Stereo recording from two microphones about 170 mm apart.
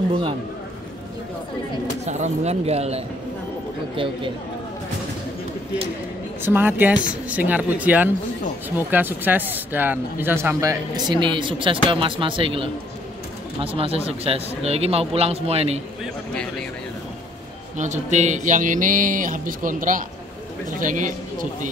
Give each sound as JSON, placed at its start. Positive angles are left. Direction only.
{"t": 2.0, "sound": "speech", "side_deg": -40}
{"t": 6.4, "sound": "speech", "side_deg": -10}
{"t": 17.7, "sound": "a sound", "side_deg": -45}